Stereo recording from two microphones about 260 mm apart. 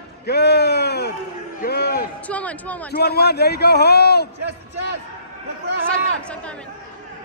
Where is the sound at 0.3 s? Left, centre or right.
Left.